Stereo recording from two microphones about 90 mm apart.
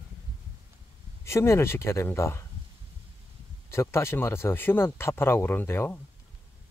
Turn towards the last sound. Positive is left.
turn(degrees=25)  # may be behind; listen again after turning